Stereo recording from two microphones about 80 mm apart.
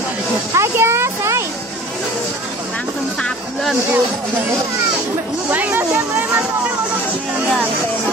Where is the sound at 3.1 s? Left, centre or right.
Centre.